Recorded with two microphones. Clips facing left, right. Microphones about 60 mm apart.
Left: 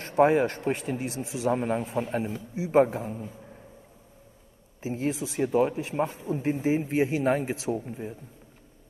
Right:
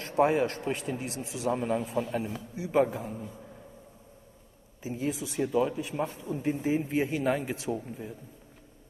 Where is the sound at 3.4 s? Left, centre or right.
Left.